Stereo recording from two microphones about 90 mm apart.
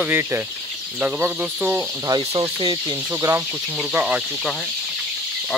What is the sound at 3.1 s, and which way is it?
Speech, 30° right (ahead or behind).